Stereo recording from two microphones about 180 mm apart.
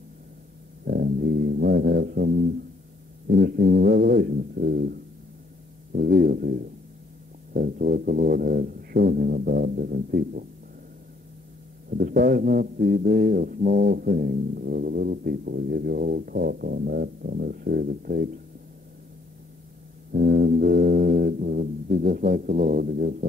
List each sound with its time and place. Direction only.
0.8 s a sound: 55° right (ahead or behind)
3.3 s speech: 60° right (ahead or behind)
5.9 s brass instrument: 50° right (ahead or behind)
11.9 s speech: 55° right (ahead or behind)
20.1 s brass instrument: 55° right (ahead or behind)